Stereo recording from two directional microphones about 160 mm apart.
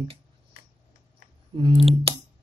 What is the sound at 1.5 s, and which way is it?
Speech, 30° right (ahead or behind).